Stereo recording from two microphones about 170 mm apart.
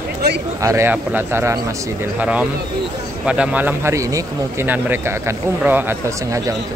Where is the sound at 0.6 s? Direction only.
15° right (ahead or behind).